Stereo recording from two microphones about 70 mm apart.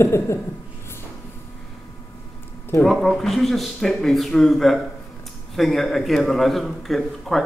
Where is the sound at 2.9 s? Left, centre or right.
Centre.